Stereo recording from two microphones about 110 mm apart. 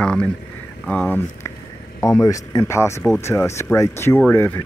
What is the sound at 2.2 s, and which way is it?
Speech, 30° left (ahead or behind).